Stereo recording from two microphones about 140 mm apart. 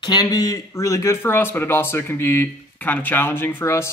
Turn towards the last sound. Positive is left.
turn(degrees=20)  # may be behind; listen again after turning